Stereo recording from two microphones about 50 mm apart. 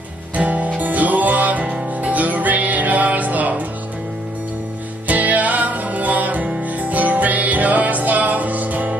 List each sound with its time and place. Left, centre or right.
0.4 s music: right
5.0 s music: right